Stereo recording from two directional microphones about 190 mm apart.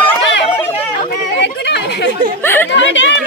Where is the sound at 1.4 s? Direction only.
65° left (ahead or behind).